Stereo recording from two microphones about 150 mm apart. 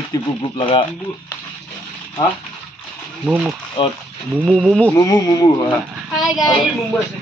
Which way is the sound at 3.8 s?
30° left (ahead or behind).